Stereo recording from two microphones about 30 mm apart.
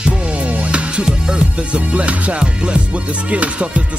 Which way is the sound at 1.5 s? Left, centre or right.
Right.